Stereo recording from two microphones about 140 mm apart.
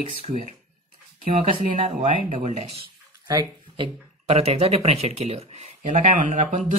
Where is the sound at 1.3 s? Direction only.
50° right (ahead or behind).